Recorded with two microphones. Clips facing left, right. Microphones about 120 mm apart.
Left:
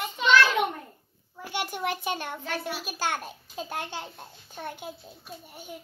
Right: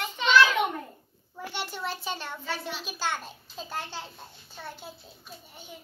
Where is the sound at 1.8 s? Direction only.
55° left (ahead or behind).